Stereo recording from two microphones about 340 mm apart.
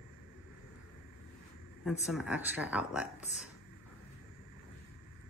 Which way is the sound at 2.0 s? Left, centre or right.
Centre.